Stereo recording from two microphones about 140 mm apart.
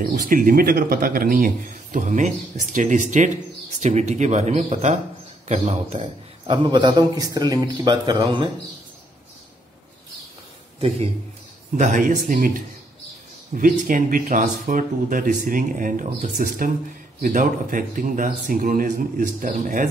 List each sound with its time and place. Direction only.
0.0 s a man's voice: 75° right (ahead or behind); by 8.5 s 35° right (ahead or behind)
11.7 s a man's voice: 70° right (ahead or behind)